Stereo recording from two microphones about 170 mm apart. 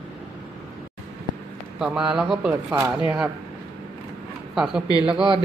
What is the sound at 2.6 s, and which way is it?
Speech, 15° right (ahead or behind).